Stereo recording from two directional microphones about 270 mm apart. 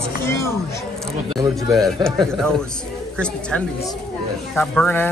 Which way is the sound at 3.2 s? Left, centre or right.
Centre.